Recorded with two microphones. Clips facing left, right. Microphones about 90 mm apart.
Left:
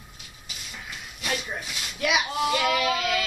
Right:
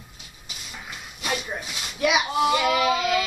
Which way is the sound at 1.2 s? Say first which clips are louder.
Right 2 dB; 15° right (ahead or behind).